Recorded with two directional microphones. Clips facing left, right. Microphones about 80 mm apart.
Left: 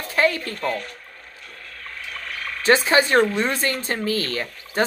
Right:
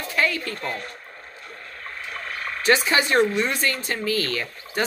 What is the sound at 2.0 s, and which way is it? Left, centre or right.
Frog, right.